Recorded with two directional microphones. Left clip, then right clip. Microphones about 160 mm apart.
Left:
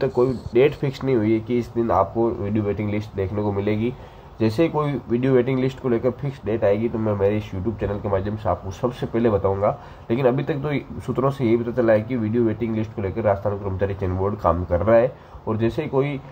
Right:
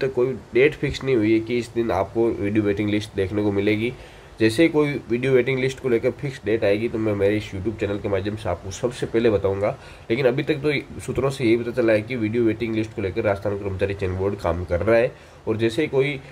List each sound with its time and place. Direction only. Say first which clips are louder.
0.0 s speech: left 2 dB; centre (ahead or behind)